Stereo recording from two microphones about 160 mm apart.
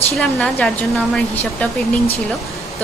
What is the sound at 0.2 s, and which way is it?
A woman's voice, 5° left (ahead or behind).